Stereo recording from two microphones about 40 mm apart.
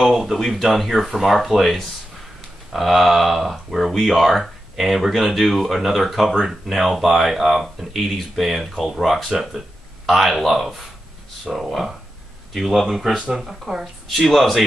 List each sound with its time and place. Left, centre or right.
0.2 s speech: centre
14.0 s speech: centre